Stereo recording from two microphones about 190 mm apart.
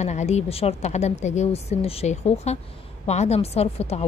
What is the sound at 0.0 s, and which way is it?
Speech, 35° left (ahead or behind).